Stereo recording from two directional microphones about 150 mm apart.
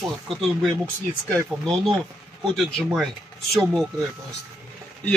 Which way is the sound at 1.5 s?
5° right (ahead or behind).